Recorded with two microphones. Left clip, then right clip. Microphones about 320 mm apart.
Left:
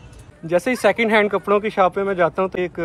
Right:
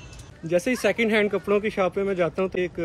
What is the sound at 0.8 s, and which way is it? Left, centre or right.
Speech, centre.